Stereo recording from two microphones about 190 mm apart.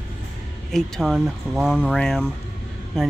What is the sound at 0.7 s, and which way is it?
Speech, centre (ahead or behind).